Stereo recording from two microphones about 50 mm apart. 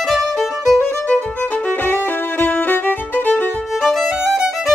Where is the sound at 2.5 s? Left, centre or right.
Left.